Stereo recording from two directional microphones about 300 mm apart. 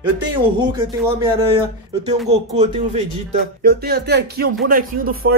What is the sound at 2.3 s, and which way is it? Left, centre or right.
Speech, right.